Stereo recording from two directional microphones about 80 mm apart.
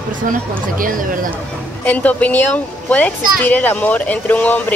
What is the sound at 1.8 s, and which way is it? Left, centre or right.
Speech, centre.